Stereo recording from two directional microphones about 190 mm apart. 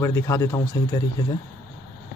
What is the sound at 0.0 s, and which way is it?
Speech, 15° left (ahead or behind).